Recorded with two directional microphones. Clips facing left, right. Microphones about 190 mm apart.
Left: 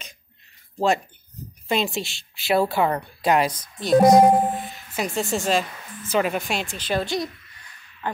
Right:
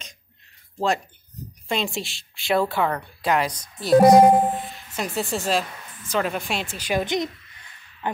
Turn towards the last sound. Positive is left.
turn(degrees=-20)  # may be behind; listen again after turning